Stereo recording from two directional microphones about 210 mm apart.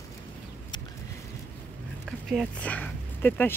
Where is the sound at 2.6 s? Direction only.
5° left (ahead or behind).